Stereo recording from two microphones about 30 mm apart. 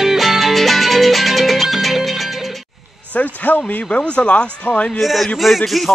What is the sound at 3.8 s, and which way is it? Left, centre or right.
Speech, left.